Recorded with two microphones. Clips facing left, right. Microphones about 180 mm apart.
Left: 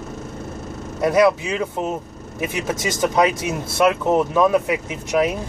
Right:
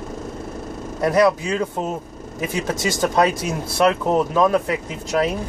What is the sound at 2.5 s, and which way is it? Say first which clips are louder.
Speech: right 2 dB; 20° left (ahead or behind).